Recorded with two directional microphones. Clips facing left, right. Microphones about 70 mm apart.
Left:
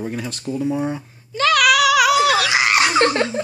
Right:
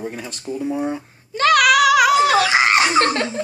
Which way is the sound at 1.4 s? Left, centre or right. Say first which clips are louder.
Right 1 dB; right.